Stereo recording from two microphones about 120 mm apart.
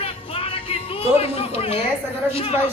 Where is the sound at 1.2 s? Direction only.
55° left (ahead or behind).